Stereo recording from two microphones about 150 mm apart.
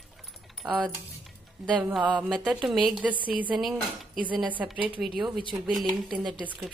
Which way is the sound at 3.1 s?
35° right (ahead or behind).